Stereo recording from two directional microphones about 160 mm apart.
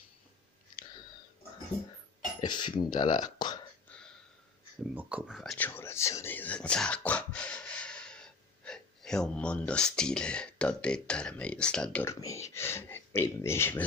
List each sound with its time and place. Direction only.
2.4 s speech: 30° left (ahead or behind)
4.9 s speech: 5° right (ahead or behind)
5.7 s speech: 15° left (ahead or behind)